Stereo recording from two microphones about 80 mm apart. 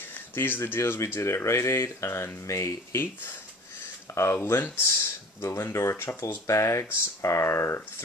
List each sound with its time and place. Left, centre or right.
0.3 s speech: left
4.1 s speech: left